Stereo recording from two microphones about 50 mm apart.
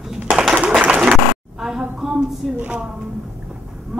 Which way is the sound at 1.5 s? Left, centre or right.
Centre.